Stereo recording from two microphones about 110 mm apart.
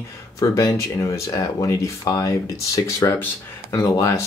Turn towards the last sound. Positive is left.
turn(degrees=25)  # may be behind; listen again after turning